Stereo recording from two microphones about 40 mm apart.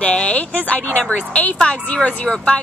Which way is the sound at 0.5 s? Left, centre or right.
Left.